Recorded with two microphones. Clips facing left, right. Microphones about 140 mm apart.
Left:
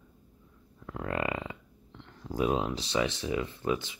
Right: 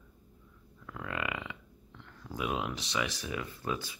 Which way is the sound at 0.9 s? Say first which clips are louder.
Left 5 dB; 35° left (ahead or behind).